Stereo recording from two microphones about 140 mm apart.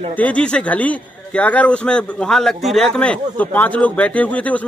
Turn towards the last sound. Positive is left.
turn(degrees=10)  # may be behind; listen again after turning